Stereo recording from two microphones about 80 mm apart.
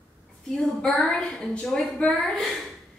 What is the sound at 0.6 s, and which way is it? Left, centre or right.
A woman's voice, centre.